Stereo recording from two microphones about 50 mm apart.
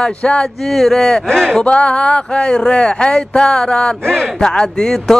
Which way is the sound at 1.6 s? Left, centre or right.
Left.